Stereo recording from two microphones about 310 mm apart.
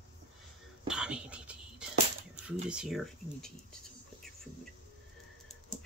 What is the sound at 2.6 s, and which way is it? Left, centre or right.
Speech, centre.